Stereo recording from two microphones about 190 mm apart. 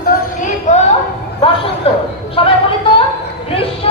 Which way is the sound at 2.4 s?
30° left (ahead or behind).